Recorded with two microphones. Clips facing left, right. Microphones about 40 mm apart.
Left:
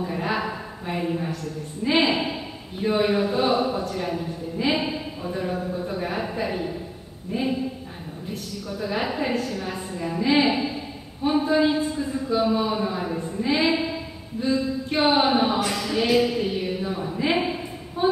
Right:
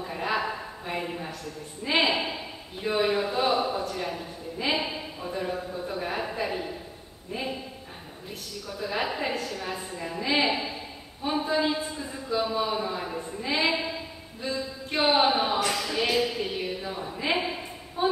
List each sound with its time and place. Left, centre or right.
0.0 s a sound: centre
1.9 s a man's voice: centre
8.6 s a man's voice: centre